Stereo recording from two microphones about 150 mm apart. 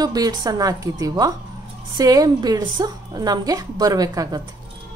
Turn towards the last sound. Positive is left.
turn(degrees=-25)  # may be behind; listen again after turning